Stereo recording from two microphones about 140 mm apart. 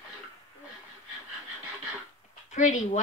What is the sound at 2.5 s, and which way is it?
Speech, 60° left (ahead or behind).